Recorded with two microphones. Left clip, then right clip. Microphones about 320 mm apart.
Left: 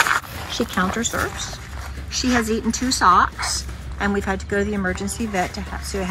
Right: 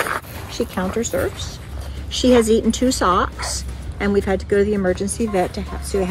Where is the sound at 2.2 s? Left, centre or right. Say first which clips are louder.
Right 7 dB; centre.